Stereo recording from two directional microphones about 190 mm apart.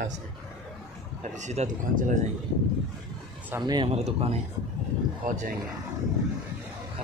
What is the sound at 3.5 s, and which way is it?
Speech, 20° right (ahead or behind).